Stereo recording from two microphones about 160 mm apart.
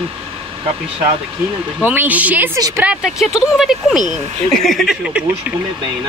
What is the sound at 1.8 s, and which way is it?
Speech, 10° right (ahead or behind).